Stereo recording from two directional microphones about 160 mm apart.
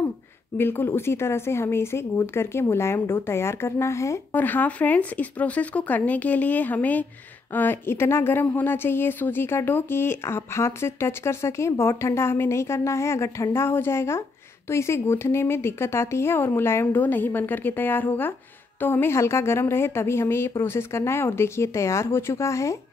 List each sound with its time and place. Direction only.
0.6 s speech: 15° left (ahead or behind)